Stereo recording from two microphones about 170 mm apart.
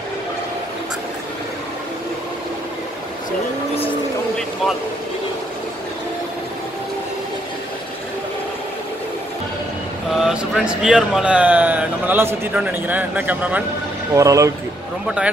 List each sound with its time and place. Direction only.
10.1 s speech: centre (ahead or behind); by 14.5 s 20° right (ahead or behind)
15.0 s a man's voice: 5° right (ahead or behind)